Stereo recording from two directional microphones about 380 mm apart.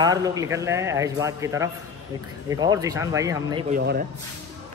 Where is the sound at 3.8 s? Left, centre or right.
Right.